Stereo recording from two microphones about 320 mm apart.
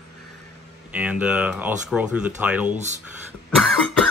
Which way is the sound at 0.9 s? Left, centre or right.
Centre.